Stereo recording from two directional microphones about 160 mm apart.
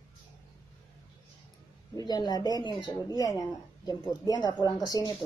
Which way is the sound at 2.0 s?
25° left (ahead or behind).